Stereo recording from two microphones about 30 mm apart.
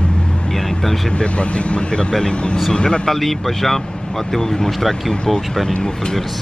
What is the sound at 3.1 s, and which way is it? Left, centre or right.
Speech, centre.